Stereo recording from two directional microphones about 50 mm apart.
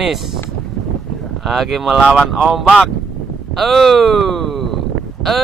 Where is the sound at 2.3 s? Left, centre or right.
Centre.